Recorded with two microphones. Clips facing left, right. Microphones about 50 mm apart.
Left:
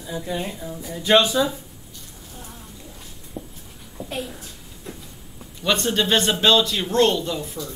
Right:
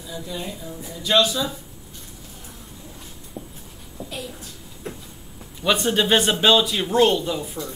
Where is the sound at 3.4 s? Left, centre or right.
Left.